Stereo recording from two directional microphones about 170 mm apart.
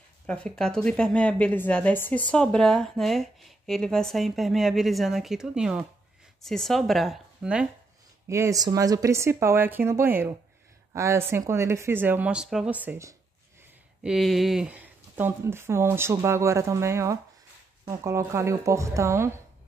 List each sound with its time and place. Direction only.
0.3 s a woman's voice: 5° left (ahead or behind)
8.3 s speech: 15° right (ahead or behind)
14.0 s speech: centre (ahead or behind); by 19.3 s 15° right (ahead or behind)